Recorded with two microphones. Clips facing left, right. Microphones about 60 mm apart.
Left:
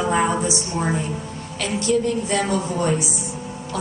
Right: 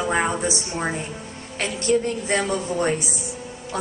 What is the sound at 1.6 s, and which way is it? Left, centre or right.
A woman's voice, right.